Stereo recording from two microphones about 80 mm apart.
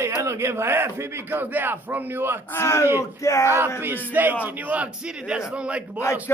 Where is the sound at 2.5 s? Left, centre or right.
Left.